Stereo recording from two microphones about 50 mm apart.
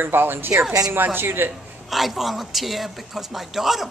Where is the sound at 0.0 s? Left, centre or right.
Right.